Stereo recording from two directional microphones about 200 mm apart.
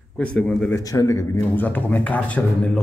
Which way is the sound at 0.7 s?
15° left (ahead or behind).